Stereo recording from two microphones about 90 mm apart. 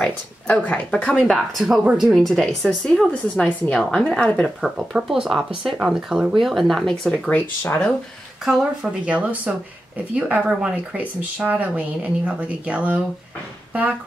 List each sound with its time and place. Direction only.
0.0 s speech: 15° left (ahead or behind)
1.3 s speech: centre (ahead or behind)
4.6 s speech: 5° right (ahead or behind)
7.2 s speech: 20° left (ahead or behind)
9.0 s speech: 15° right (ahead or behind)